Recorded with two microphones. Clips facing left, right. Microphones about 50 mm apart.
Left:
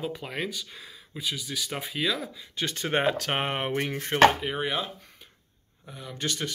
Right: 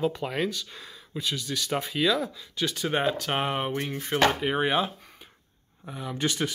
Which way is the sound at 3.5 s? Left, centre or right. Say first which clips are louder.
Left 1 dB; left.